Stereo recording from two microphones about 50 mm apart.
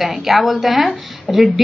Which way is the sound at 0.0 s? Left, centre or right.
Centre.